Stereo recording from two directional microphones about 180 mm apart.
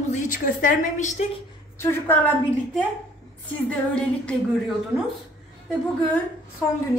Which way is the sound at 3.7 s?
5° left (ahead or behind).